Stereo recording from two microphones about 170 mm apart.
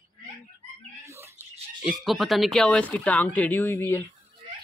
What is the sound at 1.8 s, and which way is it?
Speech, centre (ahead or behind).